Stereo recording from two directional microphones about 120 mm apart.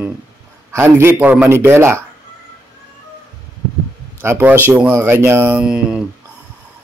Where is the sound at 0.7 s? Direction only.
20° right (ahead or behind).